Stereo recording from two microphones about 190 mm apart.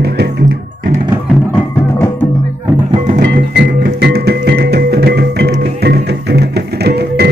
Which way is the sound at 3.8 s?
55° right (ahead or behind).